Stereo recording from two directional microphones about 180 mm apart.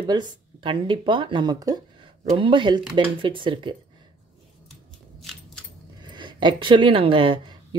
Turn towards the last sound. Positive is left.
turn(degrees=-30)  # may be behind; listen again after turning